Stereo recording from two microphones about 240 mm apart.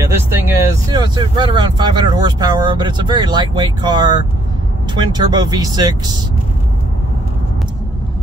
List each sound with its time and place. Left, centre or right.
0.1 s vehicle: centre
0.8 s speech: centre